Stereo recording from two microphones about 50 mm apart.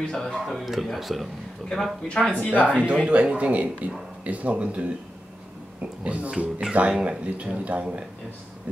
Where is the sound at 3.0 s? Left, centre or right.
Right.